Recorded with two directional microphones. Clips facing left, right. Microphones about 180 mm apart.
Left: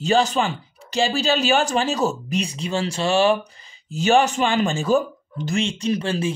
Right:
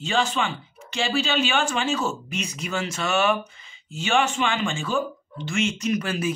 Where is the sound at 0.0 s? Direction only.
40° left (ahead or behind).